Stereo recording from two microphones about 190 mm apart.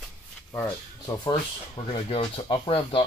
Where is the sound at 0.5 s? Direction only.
15° left (ahead or behind).